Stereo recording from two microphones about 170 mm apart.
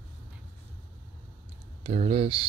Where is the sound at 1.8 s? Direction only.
35° right (ahead or behind).